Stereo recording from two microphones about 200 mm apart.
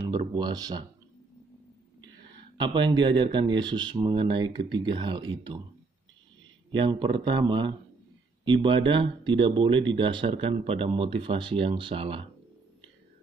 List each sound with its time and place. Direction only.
0.4 s speech: 20° right (ahead or behind)
2.5 s speech: 25° right (ahead or behind)
6.7 s speech: 25° right (ahead or behind)